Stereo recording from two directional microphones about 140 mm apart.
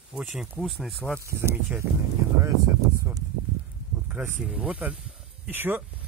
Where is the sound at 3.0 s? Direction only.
25° right (ahead or behind).